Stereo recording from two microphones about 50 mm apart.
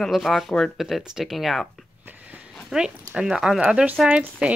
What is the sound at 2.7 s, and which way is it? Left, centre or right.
Speech, centre.